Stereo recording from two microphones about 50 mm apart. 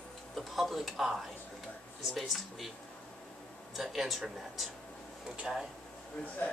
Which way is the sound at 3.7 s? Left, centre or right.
Centre.